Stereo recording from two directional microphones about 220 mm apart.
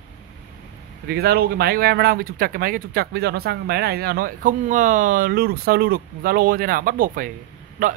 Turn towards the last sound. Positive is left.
turn(degrees=-35)  # may be behind; listen again after turning